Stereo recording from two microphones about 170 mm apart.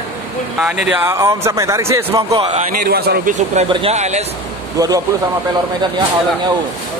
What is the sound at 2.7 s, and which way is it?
Speech, 65° right (ahead or behind).